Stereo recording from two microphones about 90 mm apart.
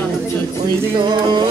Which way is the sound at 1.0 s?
60° right (ahead or behind).